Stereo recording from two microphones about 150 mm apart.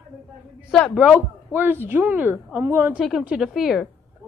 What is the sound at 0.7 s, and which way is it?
Speech, 10° left (ahead or behind).